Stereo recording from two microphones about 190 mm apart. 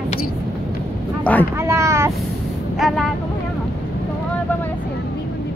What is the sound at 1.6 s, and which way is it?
Speech, 15° right (ahead or behind).